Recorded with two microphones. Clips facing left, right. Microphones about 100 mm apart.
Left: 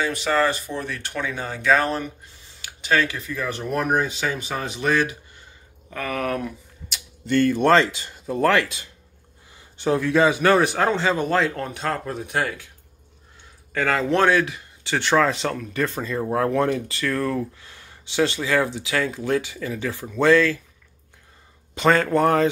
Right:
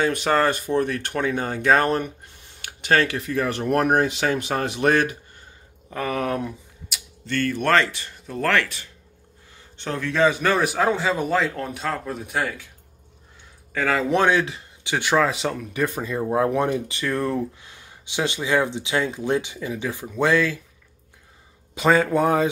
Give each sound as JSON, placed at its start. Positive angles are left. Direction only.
{"t": 0.0, "sound": "speech", "side_deg": -50}
{"t": 5.9, "sound": "speech", "side_deg": -25}
{"t": 7.2, "sound": "speech", "side_deg": 15}
{"t": 9.8, "sound": "a man's voice", "side_deg": 10}
{"t": 13.7, "sound": "speech", "side_deg": -5}
{"t": 21.7, "sound": "speech", "side_deg": -5}